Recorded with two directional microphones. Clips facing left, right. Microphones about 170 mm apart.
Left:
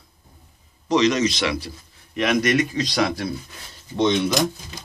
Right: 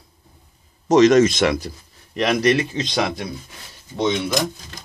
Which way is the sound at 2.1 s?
35° right (ahead or behind).